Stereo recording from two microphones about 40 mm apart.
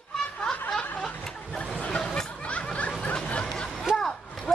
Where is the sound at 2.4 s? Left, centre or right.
Left.